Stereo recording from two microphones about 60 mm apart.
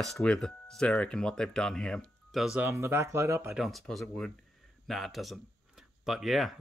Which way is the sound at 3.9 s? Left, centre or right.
Centre.